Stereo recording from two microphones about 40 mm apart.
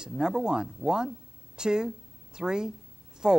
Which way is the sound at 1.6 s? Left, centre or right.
Centre.